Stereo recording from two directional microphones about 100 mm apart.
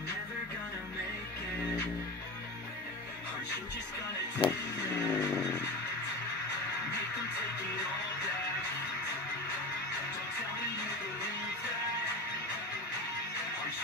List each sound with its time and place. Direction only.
4.4 s music: 65° left (ahead or behind)
5.0 s vehicle: 40° left (ahead or behind)